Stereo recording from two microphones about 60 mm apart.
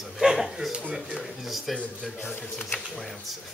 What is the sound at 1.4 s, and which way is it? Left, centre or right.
Speech, centre.